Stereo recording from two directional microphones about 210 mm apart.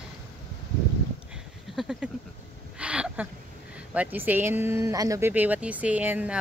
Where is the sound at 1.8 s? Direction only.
Centre (ahead or behind).